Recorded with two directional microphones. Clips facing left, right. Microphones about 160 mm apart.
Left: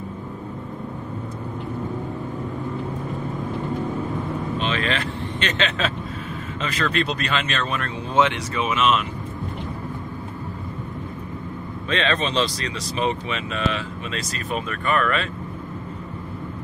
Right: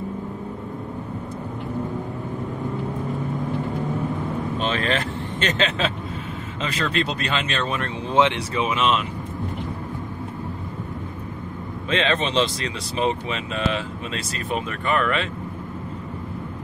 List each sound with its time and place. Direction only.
4.6 s vehicle: 45° right (ahead or behind)
6.6 s speech: 30° right (ahead or behind)
11.9 s speech: 25° right (ahead or behind)